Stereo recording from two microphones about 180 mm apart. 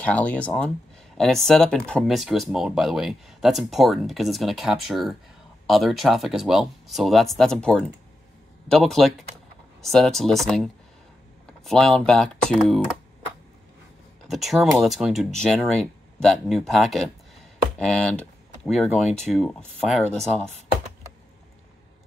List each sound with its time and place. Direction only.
0.0 s speech: 10° left (ahead or behind)
14.2 s speech: centre (ahead or behind)